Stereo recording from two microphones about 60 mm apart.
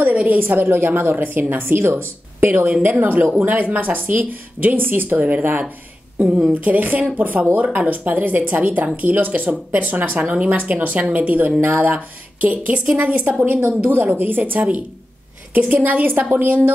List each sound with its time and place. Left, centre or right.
0.0 s a woman's voice: right